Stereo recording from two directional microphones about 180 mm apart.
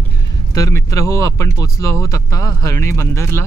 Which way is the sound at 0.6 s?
20° left (ahead or behind).